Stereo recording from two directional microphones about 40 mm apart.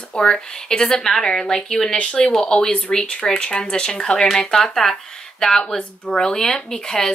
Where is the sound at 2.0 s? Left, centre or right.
Left.